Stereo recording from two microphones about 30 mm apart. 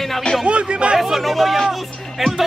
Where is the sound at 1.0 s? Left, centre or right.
Centre.